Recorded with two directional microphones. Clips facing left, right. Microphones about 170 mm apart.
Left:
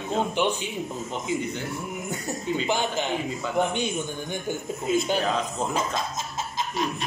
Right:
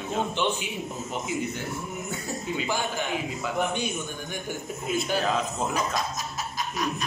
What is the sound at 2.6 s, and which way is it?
Speech, 20° left (ahead or behind).